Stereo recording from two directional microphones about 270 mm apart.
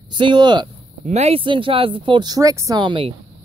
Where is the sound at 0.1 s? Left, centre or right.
Centre.